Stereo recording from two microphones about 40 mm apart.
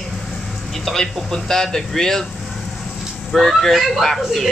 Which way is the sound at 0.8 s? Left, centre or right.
Centre.